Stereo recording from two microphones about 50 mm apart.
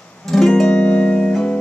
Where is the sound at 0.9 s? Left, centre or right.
Left.